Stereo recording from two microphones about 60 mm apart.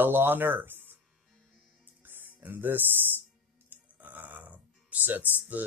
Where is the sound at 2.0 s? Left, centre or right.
Right.